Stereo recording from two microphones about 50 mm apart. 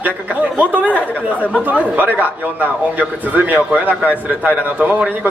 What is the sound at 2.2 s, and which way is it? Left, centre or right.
A man's voice, right.